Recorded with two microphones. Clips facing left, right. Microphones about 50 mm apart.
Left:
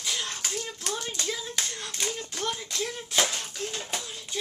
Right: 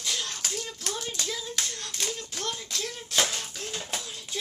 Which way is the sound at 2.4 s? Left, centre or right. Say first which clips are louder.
Left 3 dB; centre.